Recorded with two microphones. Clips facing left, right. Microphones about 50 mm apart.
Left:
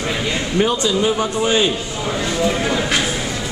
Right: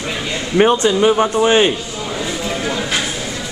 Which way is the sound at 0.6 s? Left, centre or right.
Right.